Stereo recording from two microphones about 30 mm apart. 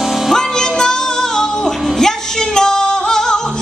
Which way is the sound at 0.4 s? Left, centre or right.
Left.